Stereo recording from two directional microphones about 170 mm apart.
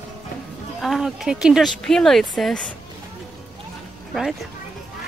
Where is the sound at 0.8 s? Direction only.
Centre (ahead or behind).